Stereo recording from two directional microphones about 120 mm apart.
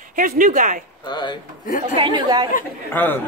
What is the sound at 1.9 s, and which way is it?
Speech, 50° right (ahead or behind).